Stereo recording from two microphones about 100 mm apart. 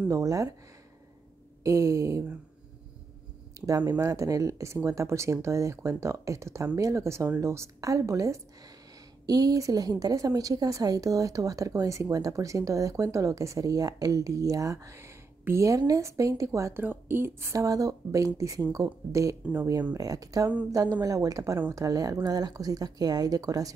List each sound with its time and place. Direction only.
0.1 s a woman's voice: 30° right (ahead or behind)
1.6 s a woman's voice: 30° right (ahead or behind)
3.6 s a woman's voice: 35° right (ahead or behind)
16.8 s a woman's voice: 20° right (ahead or behind)
19.4 s speech: 10° right (ahead or behind)
20.0 s a woman's voice: 35° right (ahead or behind)